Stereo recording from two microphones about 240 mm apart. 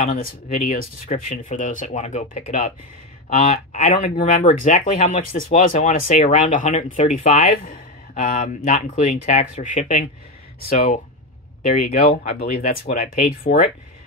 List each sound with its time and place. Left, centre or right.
0.0 s speech: left
11.6 s speech: left
13.5 s speech: left